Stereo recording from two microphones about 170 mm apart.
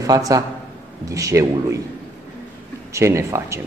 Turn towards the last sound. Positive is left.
turn(degrees=-15)  # may be behind; listen again after turning